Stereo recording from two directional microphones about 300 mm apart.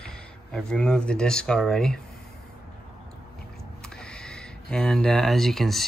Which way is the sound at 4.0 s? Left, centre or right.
Centre.